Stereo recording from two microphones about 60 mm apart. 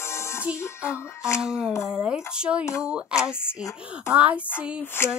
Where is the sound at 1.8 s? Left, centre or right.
Centre.